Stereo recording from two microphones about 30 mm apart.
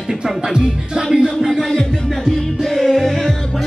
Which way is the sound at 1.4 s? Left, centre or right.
Centre.